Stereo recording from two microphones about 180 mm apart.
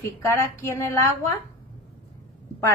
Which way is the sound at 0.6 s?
15° left (ahead or behind).